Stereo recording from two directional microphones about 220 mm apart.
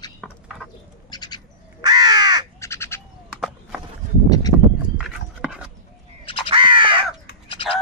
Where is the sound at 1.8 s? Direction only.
20° right (ahead or behind).